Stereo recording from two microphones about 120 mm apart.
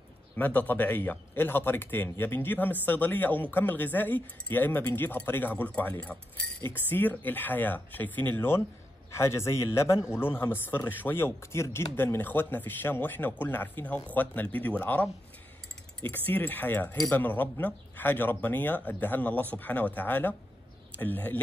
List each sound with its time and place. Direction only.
0.4 s a man's voice: 15° left (ahead or behind)
16.1 s a man's voice: 15° left (ahead or behind)